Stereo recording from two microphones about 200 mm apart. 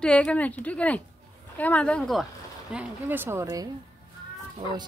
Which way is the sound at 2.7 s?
10° right (ahead or behind).